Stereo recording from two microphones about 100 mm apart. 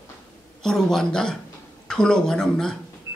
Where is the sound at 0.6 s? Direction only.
5° left (ahead or behind).